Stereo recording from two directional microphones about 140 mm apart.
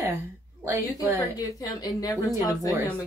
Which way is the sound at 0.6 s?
10° right (ahead or behind).